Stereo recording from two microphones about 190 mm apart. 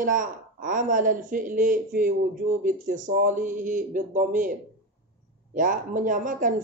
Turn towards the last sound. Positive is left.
turn(degrees=-45)  # may be behind; listen again after turning